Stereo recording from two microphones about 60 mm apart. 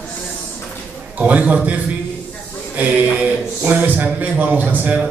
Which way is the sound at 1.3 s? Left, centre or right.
Right.